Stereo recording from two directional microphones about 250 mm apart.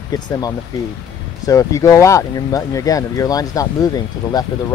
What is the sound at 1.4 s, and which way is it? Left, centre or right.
Speech, centre.